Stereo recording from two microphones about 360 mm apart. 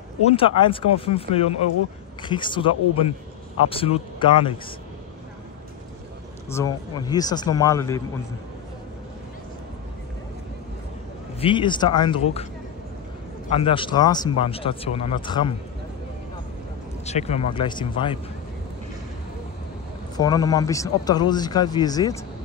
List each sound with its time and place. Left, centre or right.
0.2 s speech: centre
6.5 s speech: centre
11.3 s speech: centre
13.6 s speech: centre
17.0 s speech: centre
20.2 s speech: centre